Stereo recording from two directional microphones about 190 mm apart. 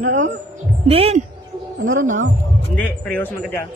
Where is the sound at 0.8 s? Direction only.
30° right (ahead or behind).